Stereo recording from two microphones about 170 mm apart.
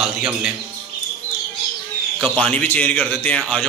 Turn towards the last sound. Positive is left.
turn(degrees=5)  # may be behind; listen again after turning